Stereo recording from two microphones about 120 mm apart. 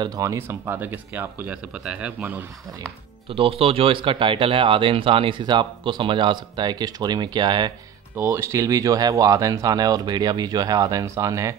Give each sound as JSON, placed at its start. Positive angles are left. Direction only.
{"t": 0.0, "sound": "speech", "side_deg": -30}
{"t": 3.3, "sound": "speech", "side_deg": -50}
{"t": 8.2, "sound": "speech", "side_deg": -25}